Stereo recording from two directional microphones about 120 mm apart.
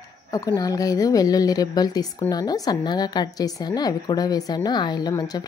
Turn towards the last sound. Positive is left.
turn(degrees=35)  # may be behind; listen again after turning